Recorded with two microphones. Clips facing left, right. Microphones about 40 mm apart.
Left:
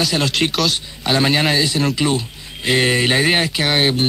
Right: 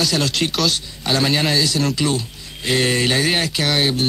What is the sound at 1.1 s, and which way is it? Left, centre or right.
Speech, left.